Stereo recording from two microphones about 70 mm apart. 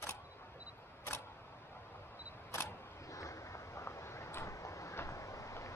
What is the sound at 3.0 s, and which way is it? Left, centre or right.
Vehicle, left.